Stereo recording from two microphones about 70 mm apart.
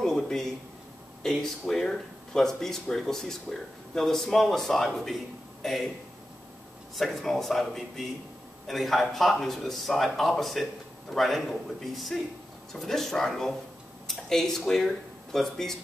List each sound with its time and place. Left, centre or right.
0.0 s a sound: centre
1.2 s speech: centre
7.0 s speech: centre